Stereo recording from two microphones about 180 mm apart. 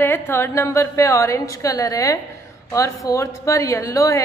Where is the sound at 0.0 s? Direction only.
15° left (ahead or behind).